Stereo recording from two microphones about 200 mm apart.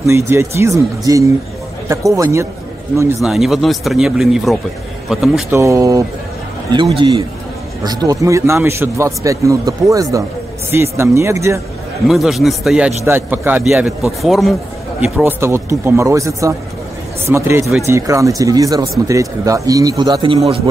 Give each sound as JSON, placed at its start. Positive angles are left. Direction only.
{"t": 0.0, "sound": "a man's voice", "side_deg": -15}
{"t": 3.2, "sound": "speech", "side_deg": 0}
{"t": 5.5, "sound": "a man's voice", "side_deg": -15}
{"t": 7.0, "sound": "a man's voice", "side_deg": -25}
{"t": 12.1, "sound": "a man's voice", "side_deg": 0}